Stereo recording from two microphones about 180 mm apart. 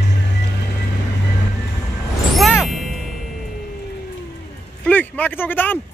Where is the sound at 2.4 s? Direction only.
Centre (ahead or behind).